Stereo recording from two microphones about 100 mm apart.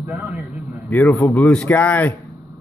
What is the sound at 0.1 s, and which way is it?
Speech, 15° right (ahead or behind).